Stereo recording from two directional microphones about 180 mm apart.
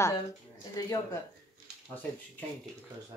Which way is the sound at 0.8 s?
20° left (ahead or behind).